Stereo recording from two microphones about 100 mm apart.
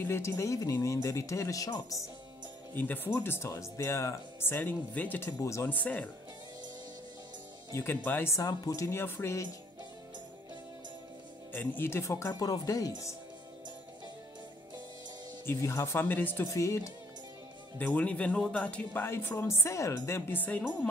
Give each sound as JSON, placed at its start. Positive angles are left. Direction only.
{"t": 0.0, "sound": "speech", "side_deg": 20}
{"t": 2.7, "sound": "speech", "side_deg": 20}
{"t": 5.4, "sound": "speech", "side_deg": 30}
{"t": 5.7, "sound": "speech", "side_deg": 15}
{"t": 7.7, "sound": "speech", "side_deg": 20}
{"t": 8.4, "sound": "speech", "side_deg": 35}
{"t": 11.5, "sound": "speech", "side_deg": 20}
{"t": 15.4, "sound": "speech", "side_deg": 30}
{"t": 16.5, "sound": "speech", "side_deg": 30}
{"t": 17.7, "sound": "speech", "side_deg": 15}
{"t": 19.0, "sound": "speech", "side_deg": 25}